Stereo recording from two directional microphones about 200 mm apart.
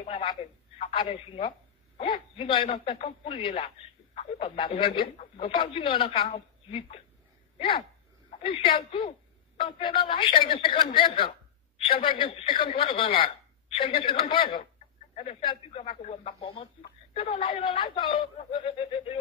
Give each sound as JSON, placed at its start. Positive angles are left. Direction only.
{"t": 0.0, "sound": "telephone", "side_deg": 30}
{"t": 2.0, "sound": "speech", "side_deg": 25}